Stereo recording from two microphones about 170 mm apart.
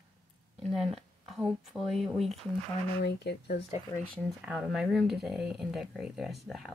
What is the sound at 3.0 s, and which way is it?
Speech, 75° left (ahead or behind).